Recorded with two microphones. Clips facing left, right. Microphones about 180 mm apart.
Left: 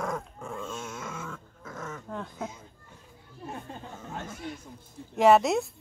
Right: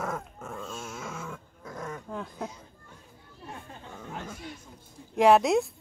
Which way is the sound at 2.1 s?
Centre (ahead or behind).